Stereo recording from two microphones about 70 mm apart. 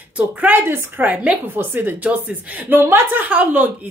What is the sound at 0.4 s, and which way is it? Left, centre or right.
A woman's voice, right.